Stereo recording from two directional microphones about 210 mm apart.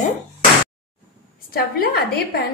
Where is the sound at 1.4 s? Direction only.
45° left (ahead or behind).